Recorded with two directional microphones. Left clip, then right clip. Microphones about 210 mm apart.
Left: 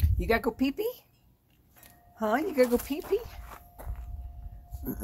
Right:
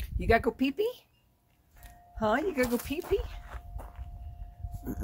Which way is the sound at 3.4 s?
25° left (ahead or behind).